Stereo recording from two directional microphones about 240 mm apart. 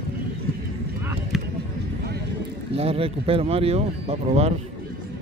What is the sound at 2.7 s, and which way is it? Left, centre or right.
Speech, right.